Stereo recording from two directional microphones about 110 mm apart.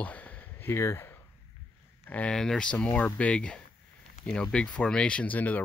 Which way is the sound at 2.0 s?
10° left (ahead or behind).